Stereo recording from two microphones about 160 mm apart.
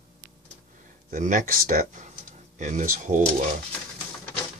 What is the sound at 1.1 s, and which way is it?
Speech, 55° right (ahead or behind).